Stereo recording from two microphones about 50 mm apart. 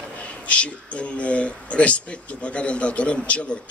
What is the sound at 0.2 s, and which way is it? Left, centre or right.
A man's voice, left.